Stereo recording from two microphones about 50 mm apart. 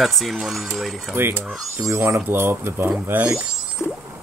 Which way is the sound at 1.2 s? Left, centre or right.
Right.